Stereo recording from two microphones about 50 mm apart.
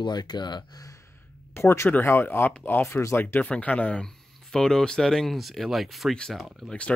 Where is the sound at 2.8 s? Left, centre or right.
Left.